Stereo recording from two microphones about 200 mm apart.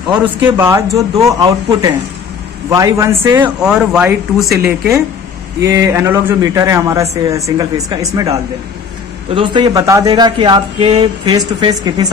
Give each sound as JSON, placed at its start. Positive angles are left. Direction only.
{"t": 0.1, "sound": "a man's voice", "side_deg": -10}
{"t": 3.6, "sound": "a man's voice", "side_deg": -5}